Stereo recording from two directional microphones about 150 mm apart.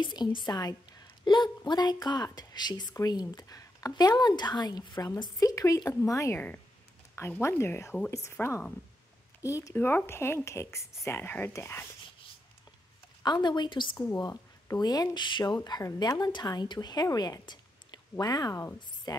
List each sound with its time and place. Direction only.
0.0 s a woman's voice: 30° left (ahead or behind); by 11.8 s 15° left (ahead or behind)
13.2 s a woman's voice: 30° left (ahead or behind)
13.9 s a woman's voice: 20° left (ahead or behind)